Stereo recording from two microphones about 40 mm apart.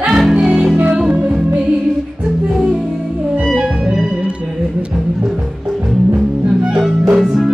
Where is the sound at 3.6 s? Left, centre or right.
Right.